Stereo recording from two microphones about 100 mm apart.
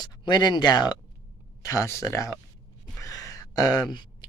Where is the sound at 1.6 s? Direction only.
35° left (ahead or behind).